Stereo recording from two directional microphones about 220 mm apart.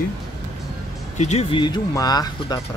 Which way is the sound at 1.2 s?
30° left (ahead or behind).